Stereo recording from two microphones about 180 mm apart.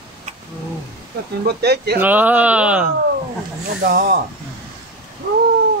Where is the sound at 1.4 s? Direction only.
65° right (ahead or behind).